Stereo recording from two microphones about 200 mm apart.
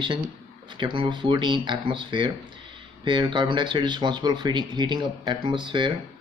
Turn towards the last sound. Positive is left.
turn(degrees=-25)  # may be behind; listen again after turning